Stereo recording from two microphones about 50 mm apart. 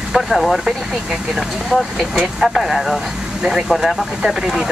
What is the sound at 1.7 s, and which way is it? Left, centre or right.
Speech, centre.